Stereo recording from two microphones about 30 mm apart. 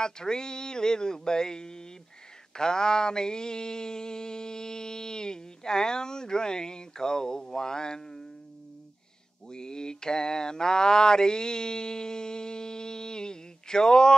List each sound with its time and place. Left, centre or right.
0.0 s mantra: left
7.5 s speech: left
9.5 s a sound: left